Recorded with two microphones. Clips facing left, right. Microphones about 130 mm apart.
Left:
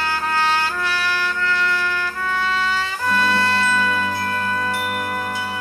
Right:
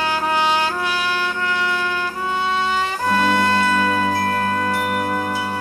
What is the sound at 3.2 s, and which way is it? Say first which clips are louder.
Music: right 2 dB; 20° right (ahead or behind).